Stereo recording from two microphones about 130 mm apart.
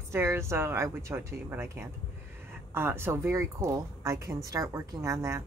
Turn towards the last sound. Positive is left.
turn(degrees=-20)  # may be behind; listen again after turning